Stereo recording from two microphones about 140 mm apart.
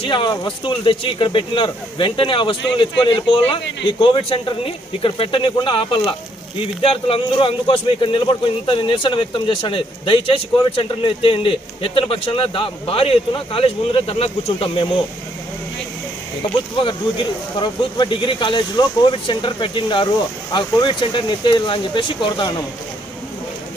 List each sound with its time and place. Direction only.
0.0 s a man's voice: 35° left (ahead or behind)
16.8 s a man's voice: 35° left (ahead or behind)